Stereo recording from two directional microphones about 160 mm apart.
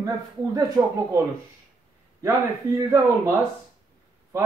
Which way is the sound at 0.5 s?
20° right (ahead or behind).